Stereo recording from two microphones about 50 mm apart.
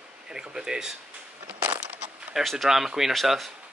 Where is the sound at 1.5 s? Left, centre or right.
Right.